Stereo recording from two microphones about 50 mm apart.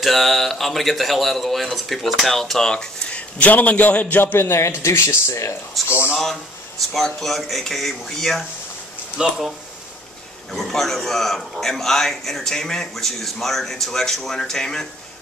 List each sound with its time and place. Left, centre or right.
0.0 s a man's voice: centre
2.7 s speech: centre
3.3 s a man's voice: left
4.4 s speech: left
7.2 s a man's voice: centre
10.5 s a man's voice: centre